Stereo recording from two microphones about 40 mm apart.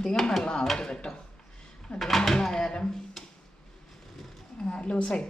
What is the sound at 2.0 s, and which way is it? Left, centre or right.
Speech, centre.